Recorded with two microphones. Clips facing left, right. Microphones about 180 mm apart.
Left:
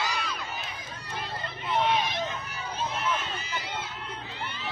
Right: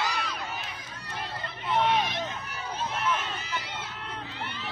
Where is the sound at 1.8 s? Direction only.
55° right (ahead or behind).